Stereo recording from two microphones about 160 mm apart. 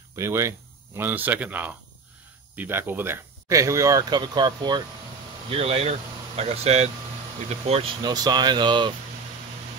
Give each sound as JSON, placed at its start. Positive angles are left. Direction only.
{"t": 0.1, "sound": "speech", "side_deg": -15}
{"t": 5.5, "sound": "speech", "side_deg": -40}
{"t": 8.0, "sound": "speech", "side_deg": -25}